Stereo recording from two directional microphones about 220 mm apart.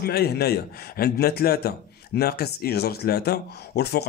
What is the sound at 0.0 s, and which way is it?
A man's voice, 45° left (ahead or behind).